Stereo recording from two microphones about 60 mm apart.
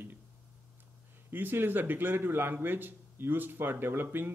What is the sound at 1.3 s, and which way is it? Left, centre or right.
Speech, right.